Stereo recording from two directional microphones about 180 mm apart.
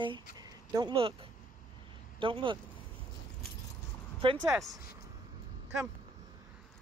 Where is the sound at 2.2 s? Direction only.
30° right (ahead or behind).